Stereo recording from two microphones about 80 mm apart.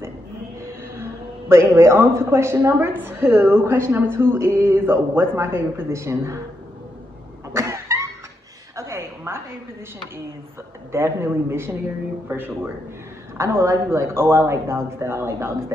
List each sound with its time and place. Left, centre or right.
1.5 s a woman's voice: right
7.5 s cough: right
8.7 s a sound: right
10.9 s a woman's voice: right
13.4 s a woman's voice: right